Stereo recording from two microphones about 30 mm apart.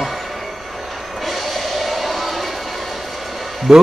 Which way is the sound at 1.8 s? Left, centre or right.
Centre.